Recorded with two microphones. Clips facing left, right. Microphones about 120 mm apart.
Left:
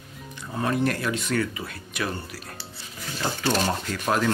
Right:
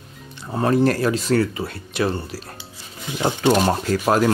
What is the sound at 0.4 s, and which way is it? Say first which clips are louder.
Speech: right 7 dB; 35° right (ahead or behind).